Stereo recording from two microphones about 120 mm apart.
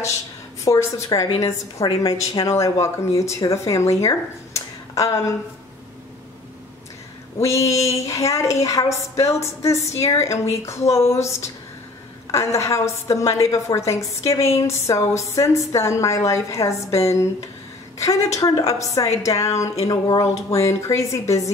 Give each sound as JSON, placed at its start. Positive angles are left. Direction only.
{"t": 0.7, "sound": "a woman's voice", "side_deg": 25}
{"t": 7.4, "sound": "a woman's voice", "side_deg": 25}